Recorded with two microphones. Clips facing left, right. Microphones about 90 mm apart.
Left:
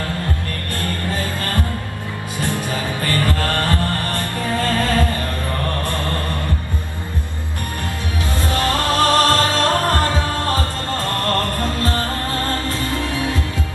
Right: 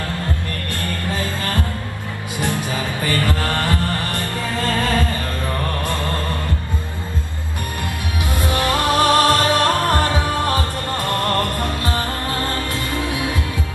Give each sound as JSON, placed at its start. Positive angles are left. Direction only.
{"t": 2.3, "sound": "music", "side_deg": -15}
{"t": 8.4, "sound": "music", "side_deg": -15}